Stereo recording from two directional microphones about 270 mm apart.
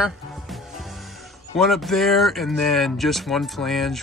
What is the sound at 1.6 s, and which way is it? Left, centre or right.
Speech, centre.